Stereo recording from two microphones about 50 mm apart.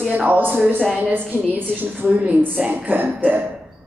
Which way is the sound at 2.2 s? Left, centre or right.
Right.